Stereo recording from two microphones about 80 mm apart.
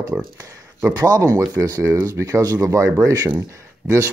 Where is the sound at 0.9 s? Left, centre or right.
Right.